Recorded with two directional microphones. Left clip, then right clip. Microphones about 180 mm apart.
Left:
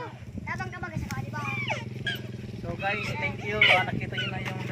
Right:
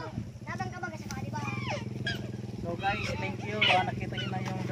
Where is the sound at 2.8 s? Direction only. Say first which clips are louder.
Left 3 dB; centre (ahead or behind).